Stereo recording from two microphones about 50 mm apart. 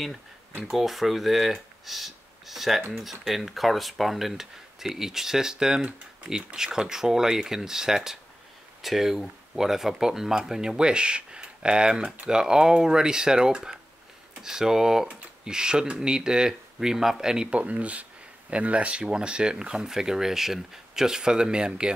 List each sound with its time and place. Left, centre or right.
0.7 s speech: centre
17.5 s speech: right